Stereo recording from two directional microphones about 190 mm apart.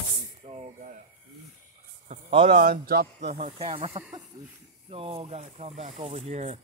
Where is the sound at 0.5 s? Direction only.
40° right (ahead or behind).